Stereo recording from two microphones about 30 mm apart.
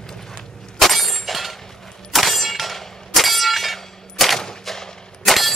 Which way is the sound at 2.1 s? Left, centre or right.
Centre.